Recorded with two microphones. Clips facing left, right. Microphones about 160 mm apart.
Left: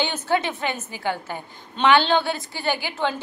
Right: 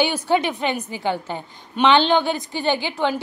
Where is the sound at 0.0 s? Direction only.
15° right (ahead or behind).